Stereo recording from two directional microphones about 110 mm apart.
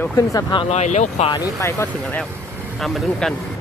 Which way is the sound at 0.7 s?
90° left.